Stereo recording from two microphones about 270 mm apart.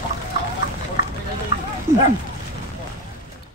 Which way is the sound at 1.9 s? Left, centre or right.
Centre.